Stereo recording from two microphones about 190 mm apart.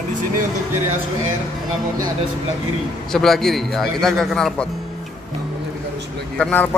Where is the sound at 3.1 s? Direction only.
Centre (ahead or behind).